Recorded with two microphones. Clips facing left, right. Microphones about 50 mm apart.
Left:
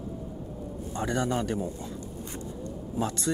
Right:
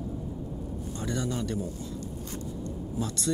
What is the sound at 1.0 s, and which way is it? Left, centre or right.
Speech, left.